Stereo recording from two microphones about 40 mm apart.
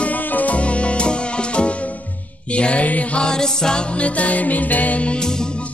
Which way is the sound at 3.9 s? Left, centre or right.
Left.